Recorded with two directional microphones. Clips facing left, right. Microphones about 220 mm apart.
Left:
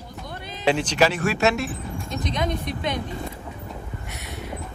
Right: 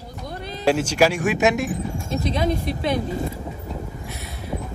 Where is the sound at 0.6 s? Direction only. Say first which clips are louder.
Right 2 dB; 10° right (ahead or behind).